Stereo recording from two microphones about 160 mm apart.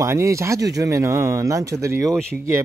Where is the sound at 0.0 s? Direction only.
20° right (ahead or behind).